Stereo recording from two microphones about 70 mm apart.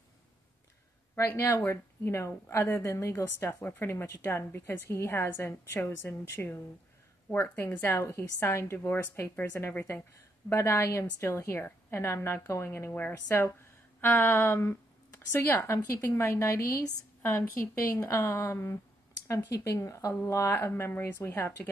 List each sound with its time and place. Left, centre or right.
1.1 s a woman's voice: left
3.9 s a woman's voice: left
4.3 s a woman's voice: left
14.0 s speech: left
15.6 s a woman's voice: left